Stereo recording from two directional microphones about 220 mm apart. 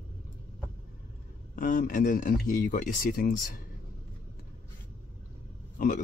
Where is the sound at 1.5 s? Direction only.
35° left (ahead or behind).